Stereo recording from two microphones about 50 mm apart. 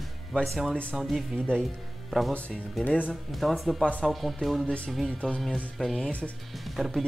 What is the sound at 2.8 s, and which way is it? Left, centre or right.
Speech, left.